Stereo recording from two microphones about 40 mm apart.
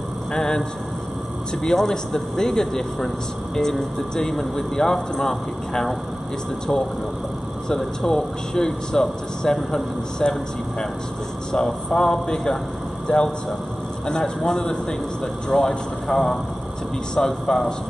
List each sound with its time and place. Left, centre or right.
0.3 s speech: centre
8.0 s speech: centre
11.5 s a man's voice: centre
16.1 s a man's voice: centre